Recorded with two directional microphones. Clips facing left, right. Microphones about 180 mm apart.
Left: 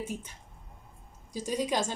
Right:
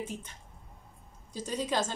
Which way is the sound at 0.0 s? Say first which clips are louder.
Left 2 dB; 10° left (ahead or behind).